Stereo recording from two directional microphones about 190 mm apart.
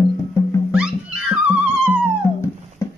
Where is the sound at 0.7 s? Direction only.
5° right (ahead or behind).